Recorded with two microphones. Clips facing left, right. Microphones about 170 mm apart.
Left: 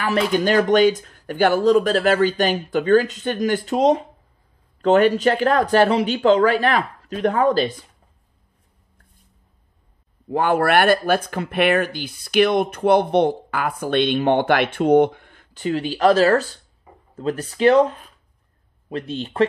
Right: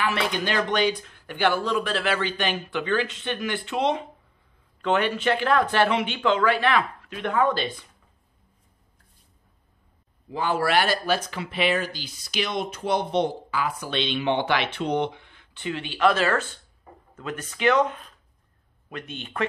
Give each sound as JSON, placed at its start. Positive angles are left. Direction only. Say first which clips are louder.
{"t": 0.0, "sound": "speech", "louder": "left 7 dB", "side_deg": 40}
{"t": 10.3, "sound": "speech", "louder": "left 6 dB", "side_deg": 55}